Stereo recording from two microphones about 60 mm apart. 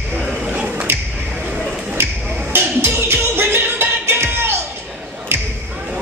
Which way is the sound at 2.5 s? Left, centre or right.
Right.